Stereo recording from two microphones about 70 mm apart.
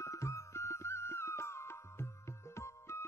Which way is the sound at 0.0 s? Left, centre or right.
Left.